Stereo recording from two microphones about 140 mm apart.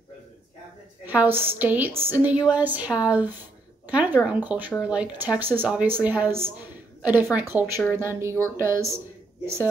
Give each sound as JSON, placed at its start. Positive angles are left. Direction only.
{"t": 1.0, "sound": "a woman's voice", "side_deg": -15}